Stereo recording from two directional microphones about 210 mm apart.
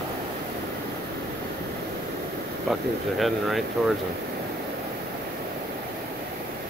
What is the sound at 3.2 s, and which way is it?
Speech, centre (ahead or behind).